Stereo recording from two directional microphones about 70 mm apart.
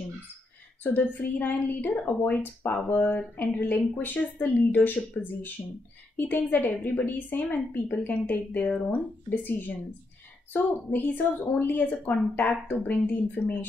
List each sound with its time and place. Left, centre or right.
0.9 s a woman's voice: left